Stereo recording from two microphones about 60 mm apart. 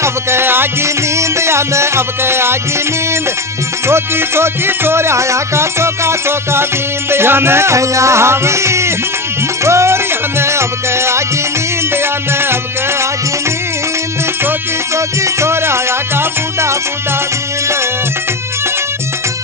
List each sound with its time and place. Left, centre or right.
0.0 s music: right
0.8 s music: right
3.8 s music: right
15.0 s music: right